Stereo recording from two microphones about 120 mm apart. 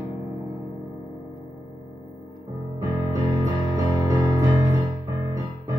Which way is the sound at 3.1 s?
30° right (ahead or behind).